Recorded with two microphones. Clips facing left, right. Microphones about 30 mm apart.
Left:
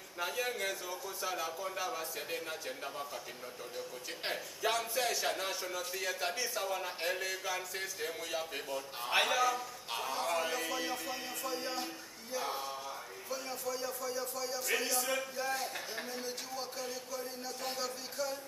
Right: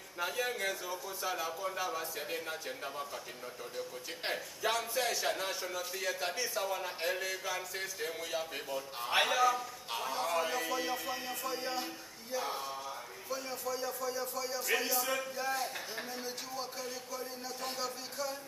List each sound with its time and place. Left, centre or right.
0.2 s a man's voice: centre